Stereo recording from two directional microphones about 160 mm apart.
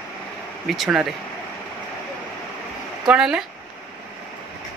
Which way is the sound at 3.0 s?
5° right (ahead or behind).